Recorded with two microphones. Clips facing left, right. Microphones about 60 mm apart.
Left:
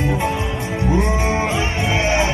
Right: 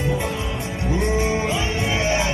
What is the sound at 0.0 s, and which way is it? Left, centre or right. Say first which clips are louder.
Music: left 4 dB; left.